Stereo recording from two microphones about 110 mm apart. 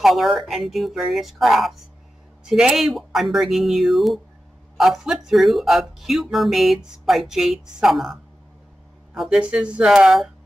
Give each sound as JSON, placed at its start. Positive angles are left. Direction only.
{"t": 0.0, "sound": "speech", "side_deg": 0}